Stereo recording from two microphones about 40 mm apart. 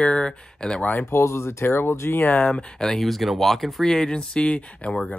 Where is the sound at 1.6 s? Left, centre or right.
Left.